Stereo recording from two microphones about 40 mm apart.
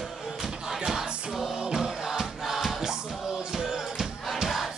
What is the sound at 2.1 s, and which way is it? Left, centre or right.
Music, centre.